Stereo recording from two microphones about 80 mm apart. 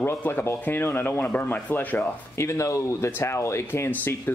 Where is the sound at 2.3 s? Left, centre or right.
Left.